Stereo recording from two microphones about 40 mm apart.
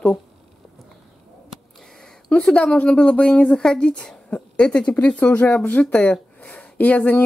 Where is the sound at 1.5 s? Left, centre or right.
Centre.